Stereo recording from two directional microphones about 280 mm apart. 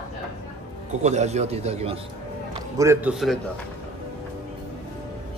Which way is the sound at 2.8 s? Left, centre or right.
Centre.